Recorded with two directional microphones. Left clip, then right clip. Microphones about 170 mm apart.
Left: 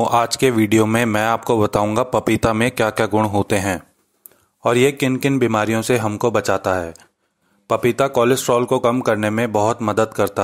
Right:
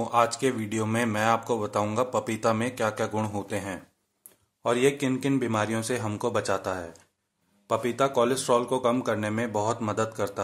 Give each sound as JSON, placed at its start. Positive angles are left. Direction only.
{"t": 0.0, "sound": "speech", "side_deg": 50}